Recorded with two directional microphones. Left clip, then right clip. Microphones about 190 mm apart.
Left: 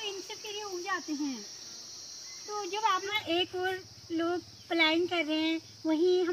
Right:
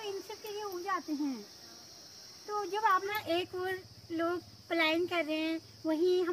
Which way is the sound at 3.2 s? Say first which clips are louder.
Left 3 dB; 20° right (ahead or behind).